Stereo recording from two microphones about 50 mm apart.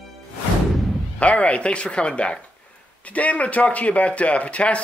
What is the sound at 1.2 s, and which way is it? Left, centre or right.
A man's voice, left.